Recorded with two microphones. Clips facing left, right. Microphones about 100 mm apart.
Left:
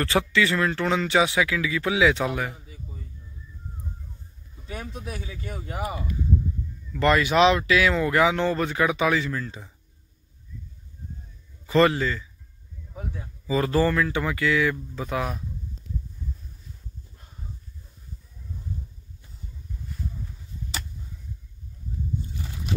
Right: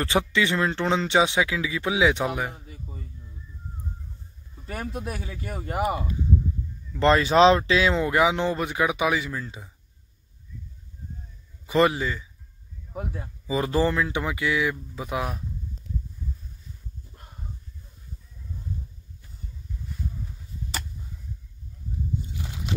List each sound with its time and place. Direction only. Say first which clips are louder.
0.0 s speech: left 1 dB; 20° right (ahead or behind)
4.6 s speech: right 3 dB; 55° right (ahead or behind)
6.9 s speech: right 1 dB; 25° right (ahead or behind)
11.6 s a man's voice: left 1 dB; 15° right (ahead or behind)
12.9 s speech: right 3 dB; 60° right (ahead or behind)
13.5 s speech: left 1 dB; 20° right (ahead or behind)